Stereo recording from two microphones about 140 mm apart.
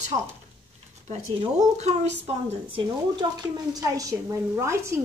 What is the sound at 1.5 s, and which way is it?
Speech, 50° right (ahead or behind).